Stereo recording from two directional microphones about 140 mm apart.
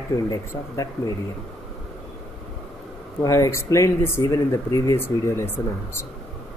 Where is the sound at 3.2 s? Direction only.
20° left (ahead or behind).